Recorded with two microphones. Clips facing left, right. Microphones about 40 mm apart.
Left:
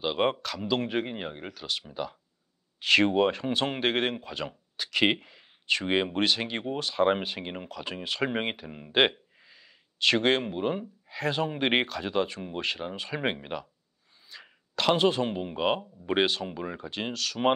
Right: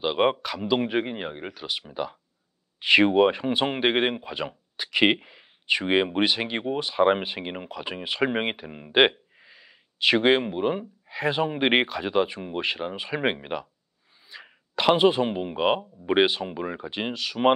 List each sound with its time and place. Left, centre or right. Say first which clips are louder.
0.0 s speech: right 4 dB; centre